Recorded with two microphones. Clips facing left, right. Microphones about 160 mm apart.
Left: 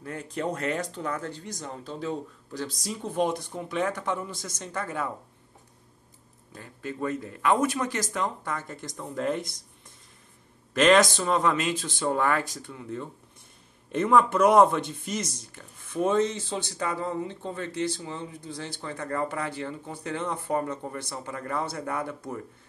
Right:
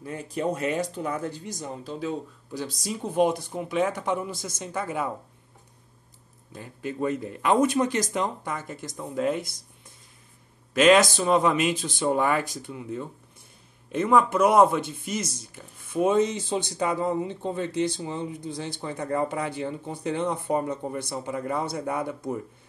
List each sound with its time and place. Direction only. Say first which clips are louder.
0.0 s speech: right 3 dB; 10° right (ahead or behind)
6.5 s speech: right 3 dB; 15° right (ahead or behind)
10.7 s speech: right 2 dB; 5° right (ahead or behind)